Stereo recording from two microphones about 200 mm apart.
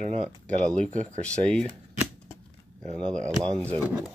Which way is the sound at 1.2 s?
5° left (ahead or behind).